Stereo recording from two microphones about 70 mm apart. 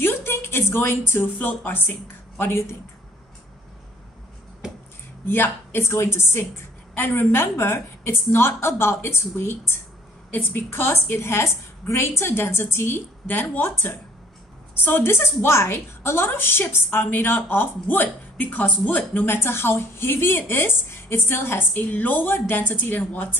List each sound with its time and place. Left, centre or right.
0.0 s speech: left
1.5 s a woman's voice: left
5.2 s a woman's voice: left